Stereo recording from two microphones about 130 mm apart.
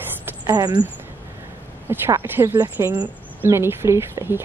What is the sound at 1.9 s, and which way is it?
Speech, 20° right (ahead or behind).